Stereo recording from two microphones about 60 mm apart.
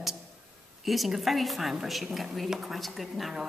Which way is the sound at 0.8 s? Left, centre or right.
Centre.